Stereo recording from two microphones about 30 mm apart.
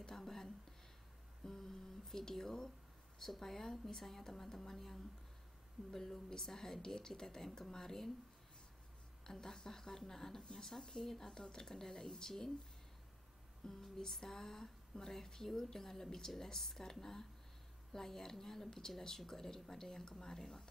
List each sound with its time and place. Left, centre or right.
0.1 s a sound: centre
1.4 s speech: centre
9.2 s speech: centre
13.7 s speech: centre